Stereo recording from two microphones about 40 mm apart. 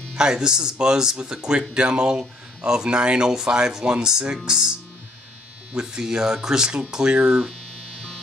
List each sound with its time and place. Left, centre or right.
0.1 s speech: centre